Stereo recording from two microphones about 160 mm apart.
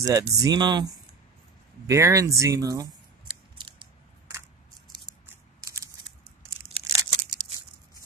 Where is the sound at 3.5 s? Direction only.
30° right (ahead or behind).